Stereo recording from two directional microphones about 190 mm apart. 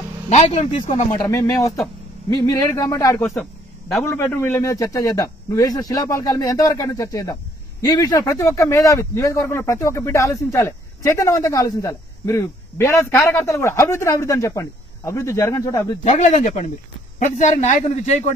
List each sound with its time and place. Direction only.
0.3 s a man's voice: 35° left (ahead or behind)
1.2 s a man's voice: 15° left (ahead or behind)
3.2 s a man's voice: 5° left (ahead or behind)
16.0 s a man's voice: 40° left (ahead or behind)